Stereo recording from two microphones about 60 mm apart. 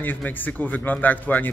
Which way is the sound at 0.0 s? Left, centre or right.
Left.